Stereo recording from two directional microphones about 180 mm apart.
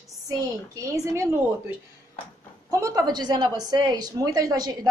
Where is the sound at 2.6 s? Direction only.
20° right (ahead or behind).